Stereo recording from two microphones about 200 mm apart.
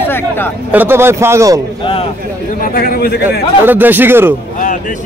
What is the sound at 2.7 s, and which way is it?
Speech, 50° left (ahead or behind).